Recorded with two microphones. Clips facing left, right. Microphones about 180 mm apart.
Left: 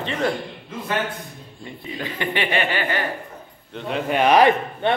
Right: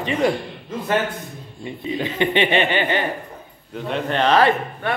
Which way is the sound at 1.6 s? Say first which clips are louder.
Right 6 dB; 20° right (ahead or behind).